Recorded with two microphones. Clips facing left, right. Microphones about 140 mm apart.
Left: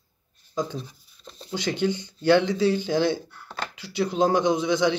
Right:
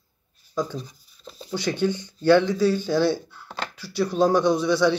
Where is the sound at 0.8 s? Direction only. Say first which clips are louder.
Right 1 dB; centre (ahead or behind).